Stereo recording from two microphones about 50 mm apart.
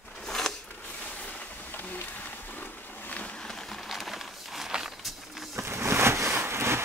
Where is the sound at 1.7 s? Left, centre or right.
Left.